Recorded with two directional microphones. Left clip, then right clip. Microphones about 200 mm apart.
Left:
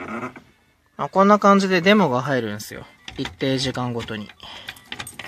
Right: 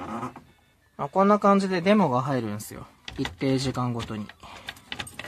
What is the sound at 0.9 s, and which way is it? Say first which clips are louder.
Speech: left 5 dB; 10° left (ahead or behind).